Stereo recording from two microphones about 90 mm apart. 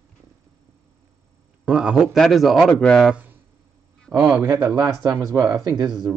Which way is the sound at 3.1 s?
20° right (ahead or behind).